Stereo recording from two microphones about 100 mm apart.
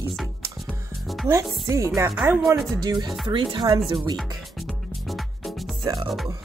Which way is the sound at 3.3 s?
55° right (ahead or behind).